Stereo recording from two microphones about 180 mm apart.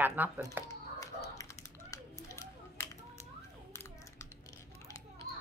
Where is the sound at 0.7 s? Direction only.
20° left (ahead or behind).